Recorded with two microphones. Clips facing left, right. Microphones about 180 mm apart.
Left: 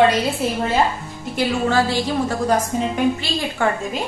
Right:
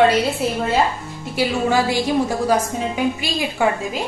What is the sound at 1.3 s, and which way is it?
A woman's voice, 10° right (ahead or behind).